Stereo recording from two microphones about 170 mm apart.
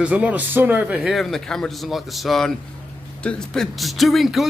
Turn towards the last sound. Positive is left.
turn(degrees=0)  # may be behind; listen again after turning